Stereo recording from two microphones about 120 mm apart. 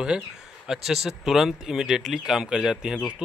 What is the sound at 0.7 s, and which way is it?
Speech, 5° right (ahead or behind).